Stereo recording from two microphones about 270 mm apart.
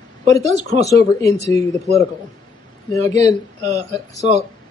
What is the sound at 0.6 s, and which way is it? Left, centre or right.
Speech, right.